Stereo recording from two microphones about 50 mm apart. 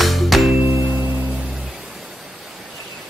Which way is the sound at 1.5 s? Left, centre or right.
Centre.